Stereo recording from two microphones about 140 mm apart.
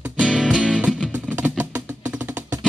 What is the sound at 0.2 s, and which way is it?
Music, 5° right (ahead or behind).